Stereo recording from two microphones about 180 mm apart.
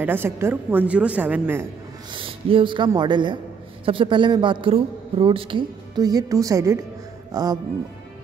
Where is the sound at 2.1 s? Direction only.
30° right (ahead or behind).